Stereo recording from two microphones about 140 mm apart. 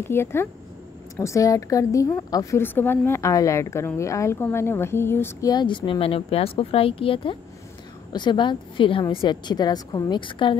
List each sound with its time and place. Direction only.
0.1 s a woman's voice: 15° left (ahead or behind)
5.5 s a woman's voice: 30° left (ahead or behind)